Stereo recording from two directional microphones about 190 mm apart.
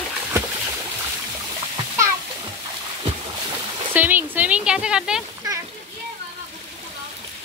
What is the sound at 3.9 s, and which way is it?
Speech, 10° right (ahead or behind).